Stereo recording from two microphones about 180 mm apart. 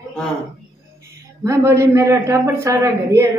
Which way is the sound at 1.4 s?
15° right (ahead or behind).